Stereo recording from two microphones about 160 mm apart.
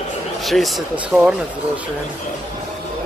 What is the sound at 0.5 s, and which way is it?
Speech, centre (ahead or behind).